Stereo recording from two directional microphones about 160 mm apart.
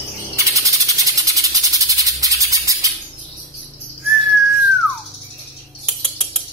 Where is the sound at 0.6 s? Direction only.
20° right (ahead or behind).